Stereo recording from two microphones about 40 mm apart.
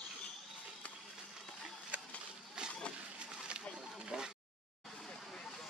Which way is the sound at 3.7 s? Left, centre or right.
Centre.